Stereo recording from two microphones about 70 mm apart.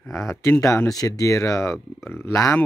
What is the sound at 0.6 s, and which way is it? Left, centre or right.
Speech, left.